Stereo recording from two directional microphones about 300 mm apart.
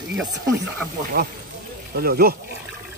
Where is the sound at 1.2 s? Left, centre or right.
Right.